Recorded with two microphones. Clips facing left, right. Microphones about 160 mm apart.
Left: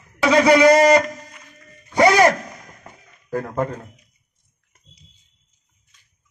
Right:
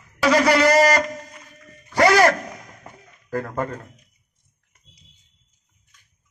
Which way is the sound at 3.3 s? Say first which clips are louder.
Left 2 dB; 10° left (ahead or behind).